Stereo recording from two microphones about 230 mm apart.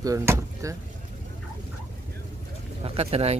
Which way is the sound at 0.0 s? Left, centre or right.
Centre.